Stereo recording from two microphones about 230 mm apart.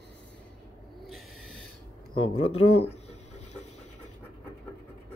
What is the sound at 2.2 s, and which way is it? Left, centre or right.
Speech, left.